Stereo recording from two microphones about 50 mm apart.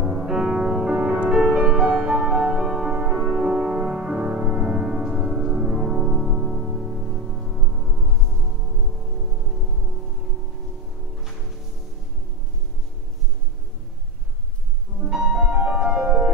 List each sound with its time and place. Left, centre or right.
0.0 s music: centre
15.0 s music: centre